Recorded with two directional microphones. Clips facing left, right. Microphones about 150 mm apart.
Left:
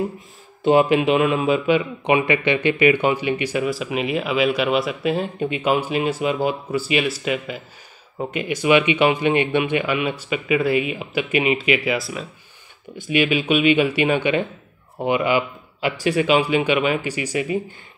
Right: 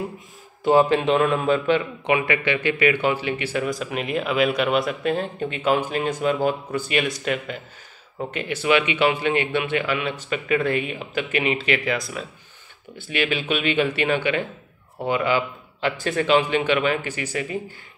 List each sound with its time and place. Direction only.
0.7 s speech: 15° left (ahead or behind)
12.9 s speech: 15° left (ahead or behind)